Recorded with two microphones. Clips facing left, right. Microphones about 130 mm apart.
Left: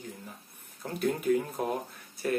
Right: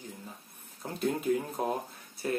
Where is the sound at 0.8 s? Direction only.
25° right (ahead or behind).